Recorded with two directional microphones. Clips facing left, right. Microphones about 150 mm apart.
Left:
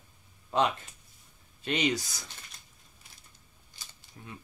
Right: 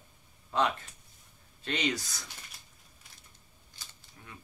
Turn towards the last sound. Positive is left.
turn(degrees=20)  # may be behind; listen again after turning